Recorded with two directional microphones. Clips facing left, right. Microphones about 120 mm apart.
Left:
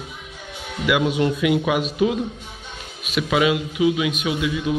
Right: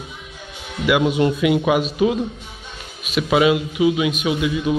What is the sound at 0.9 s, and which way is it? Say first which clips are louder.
Speech: right 3 dB; 25° right (ahead or behind).